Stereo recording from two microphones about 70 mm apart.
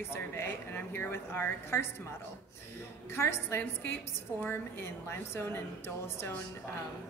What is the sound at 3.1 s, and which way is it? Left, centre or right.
A woman's voice, left.